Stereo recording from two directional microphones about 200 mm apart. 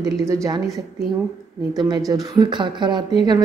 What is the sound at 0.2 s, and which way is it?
Speech, 15° right (ahead or behind).